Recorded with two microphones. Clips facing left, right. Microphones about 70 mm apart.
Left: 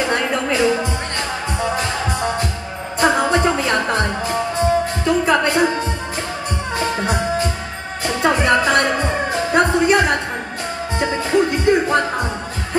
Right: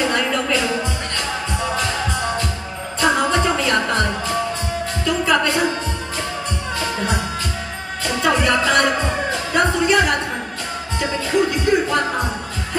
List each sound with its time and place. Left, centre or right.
0.0 s music: left
3.0 s music: left
6.8 s music: left